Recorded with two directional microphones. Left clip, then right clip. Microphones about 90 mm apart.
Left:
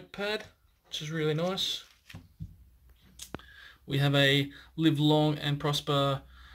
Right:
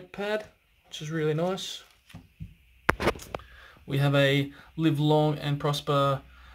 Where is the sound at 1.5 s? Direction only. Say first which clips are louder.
Left 2 dB; 15° right (ahead or behind).